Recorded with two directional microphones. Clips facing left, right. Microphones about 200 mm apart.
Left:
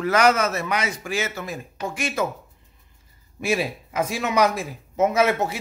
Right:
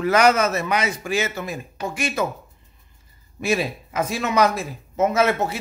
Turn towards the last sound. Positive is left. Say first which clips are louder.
# even
turn(degrees=15)  # may be behind; listen again after turning